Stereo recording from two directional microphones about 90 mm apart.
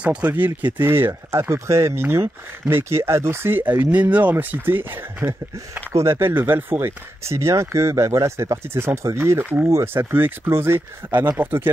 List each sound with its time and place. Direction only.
0.0 s speech: 15° right (ahead or behind)